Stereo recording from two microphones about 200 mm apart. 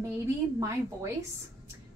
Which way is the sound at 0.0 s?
15° right (ahead or behind).